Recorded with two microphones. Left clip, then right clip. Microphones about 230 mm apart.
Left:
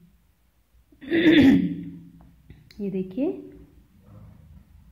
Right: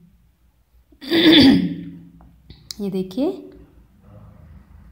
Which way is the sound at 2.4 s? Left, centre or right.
Centre.